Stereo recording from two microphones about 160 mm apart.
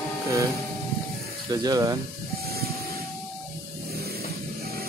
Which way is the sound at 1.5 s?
25° right (ahead or behind).